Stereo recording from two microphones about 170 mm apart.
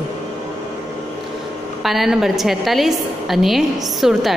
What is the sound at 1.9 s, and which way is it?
A woman's voice, centre (ahead or behind).